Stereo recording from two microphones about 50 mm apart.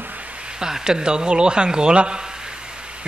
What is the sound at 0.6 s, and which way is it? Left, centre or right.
Speech, centre.